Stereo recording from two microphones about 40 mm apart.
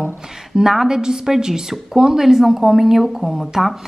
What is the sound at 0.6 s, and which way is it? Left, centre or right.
A woman's voice, centre.